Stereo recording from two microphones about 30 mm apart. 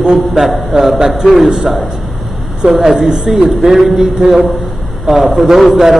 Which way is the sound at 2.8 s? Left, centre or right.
Centre.